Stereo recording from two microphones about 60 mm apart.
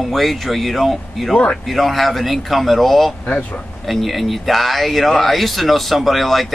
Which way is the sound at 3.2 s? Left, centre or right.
Left.